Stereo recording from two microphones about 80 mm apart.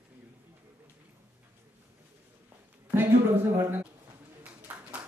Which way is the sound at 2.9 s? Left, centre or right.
Right.